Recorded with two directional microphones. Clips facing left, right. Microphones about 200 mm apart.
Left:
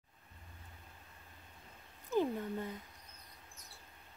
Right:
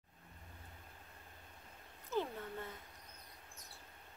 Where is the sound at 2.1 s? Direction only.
15° left (ahead or behind).